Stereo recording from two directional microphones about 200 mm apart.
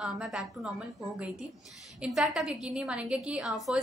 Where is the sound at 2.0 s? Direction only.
Centre (ahead or behind).